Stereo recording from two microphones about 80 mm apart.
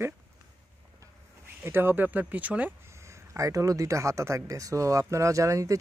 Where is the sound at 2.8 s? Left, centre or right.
Right.